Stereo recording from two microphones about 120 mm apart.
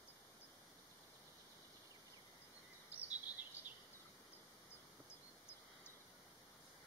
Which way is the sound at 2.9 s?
15° right (ahead or behind).